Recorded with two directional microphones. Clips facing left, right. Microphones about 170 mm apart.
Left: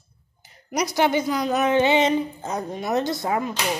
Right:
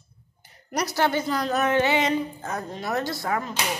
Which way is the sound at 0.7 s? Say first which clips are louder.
Left 3 dB; 15° left (ahead or behind).